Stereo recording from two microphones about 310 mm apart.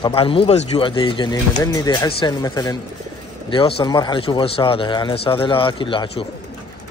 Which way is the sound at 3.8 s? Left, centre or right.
Centre.